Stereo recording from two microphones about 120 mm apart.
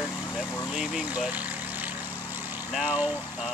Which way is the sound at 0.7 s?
5° right (ahead or behind).